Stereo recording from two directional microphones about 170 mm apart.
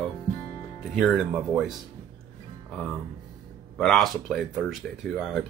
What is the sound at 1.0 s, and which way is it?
Speech, 5° right (ahead or behind).